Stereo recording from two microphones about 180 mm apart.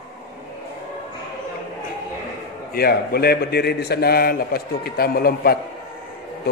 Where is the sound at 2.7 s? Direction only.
60° left (ahead or behind).